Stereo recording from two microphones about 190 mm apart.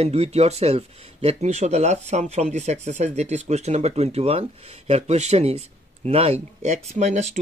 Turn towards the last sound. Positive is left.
turn(degrees=-35)  # may be behind; listen again after turning